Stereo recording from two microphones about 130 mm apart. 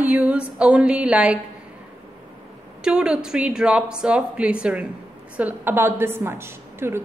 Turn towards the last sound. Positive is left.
turn(degrees=-20)  # may be behind; listen again after turning